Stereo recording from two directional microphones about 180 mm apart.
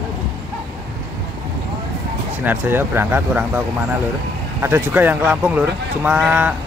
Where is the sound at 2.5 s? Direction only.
10° right (ahead or behind).